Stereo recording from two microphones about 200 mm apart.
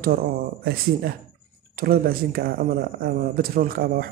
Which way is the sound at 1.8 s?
50° right (ahead or behind).